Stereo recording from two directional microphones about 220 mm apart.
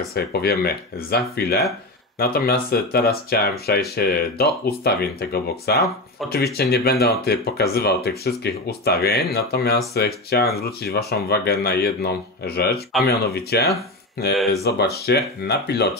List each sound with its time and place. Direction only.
0.1 s speech: 45° left (ahead or behind)